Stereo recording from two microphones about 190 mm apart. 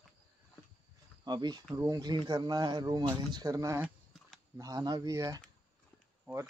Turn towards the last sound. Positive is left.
turn(degrees=-15)  # may be behind; listen again after turning